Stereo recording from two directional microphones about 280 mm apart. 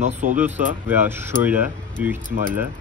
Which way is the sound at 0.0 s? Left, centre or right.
Right.